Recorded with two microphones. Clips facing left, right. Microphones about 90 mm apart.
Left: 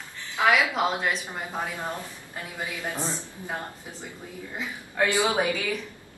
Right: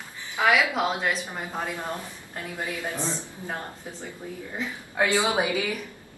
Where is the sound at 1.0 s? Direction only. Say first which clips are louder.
Right 1 dB; centre (ahead or behind).